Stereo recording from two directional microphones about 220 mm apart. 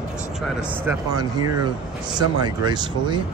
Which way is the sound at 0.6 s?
10° right (ahead or behind).